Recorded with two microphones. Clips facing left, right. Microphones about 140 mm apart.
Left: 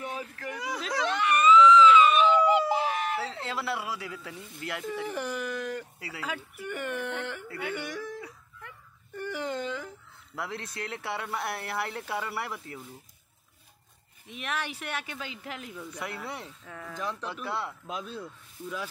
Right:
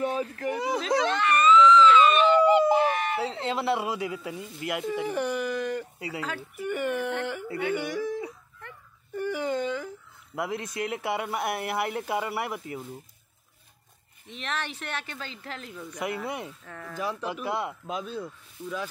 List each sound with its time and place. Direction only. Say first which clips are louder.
0.0 s speech: right 8 dB; 35° right (ahead or behind)
1.0 s a sound: left 2 dB; 10° left (ahead or behind)
3.2 s speech: right 5 dB; 20° right (ahead or behind)
4.8 s speech: right 4 dB; 5° right (ahead or behind)
5.9 s speech: right 7 dB; 20° right (ahead or behind)
6.2 s speech: right 1 dB; 10° left (ahead or behind)
6.6 s speech: right 7 dB; 5° right (ahead or behind)
9.1 s whimper: right 5 dB; 5° right (ahead or behind)
10.3 s speech: right 6 dB; 15° right (ahead or behind)
14.2 s speech: right 1 dB; 10° left (ahead or behind)
15.9 s speech: right 7 dB; 15° right (ahead or behind)
16.6 s speech: right 1 dB; 5° left (ahead or behind)
16.9 s speech: right 4 dB; 5° right (ahead or behind)
17.8 s speech: right 4 dB; centre (ahead or behind)